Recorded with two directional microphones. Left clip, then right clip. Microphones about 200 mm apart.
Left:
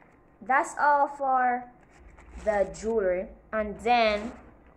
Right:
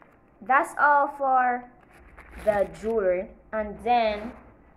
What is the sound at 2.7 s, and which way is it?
Speech, 25° right (ahead or behind).